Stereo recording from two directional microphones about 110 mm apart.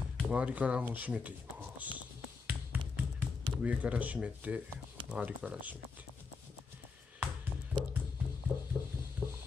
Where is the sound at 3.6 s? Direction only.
10° right (ahead or behind).